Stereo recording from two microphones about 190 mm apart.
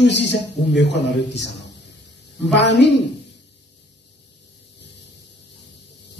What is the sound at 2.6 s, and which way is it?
Speech, 65° left (ahead or behind).